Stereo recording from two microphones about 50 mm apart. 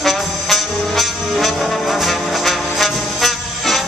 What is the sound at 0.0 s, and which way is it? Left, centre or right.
Music, centre.